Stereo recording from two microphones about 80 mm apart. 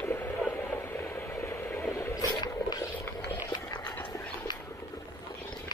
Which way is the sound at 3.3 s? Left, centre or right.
Left.